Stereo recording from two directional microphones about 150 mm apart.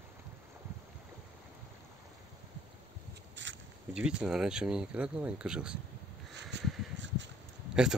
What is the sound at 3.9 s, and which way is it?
Speech, 5° right (ahead or behind).